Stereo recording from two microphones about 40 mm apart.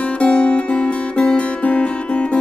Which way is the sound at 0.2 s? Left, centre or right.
Left.